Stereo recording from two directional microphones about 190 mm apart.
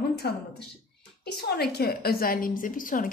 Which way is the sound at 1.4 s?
55° left (ahead or behind).